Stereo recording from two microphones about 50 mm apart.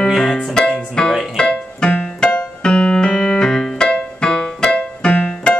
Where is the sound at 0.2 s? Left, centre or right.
Centre.